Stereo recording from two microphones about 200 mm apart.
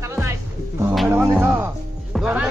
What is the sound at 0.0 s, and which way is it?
Music, 10° right (ahead or behind).